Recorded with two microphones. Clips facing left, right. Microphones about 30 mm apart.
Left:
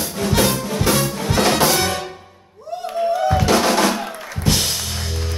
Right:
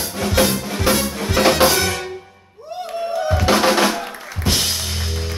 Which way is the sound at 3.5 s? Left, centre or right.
Centre.